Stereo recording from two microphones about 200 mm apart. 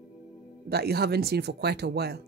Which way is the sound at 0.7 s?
50° right (ahead or behind).